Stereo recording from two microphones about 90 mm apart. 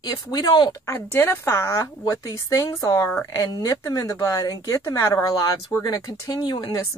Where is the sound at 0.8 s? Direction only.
25° left (ahead or behind).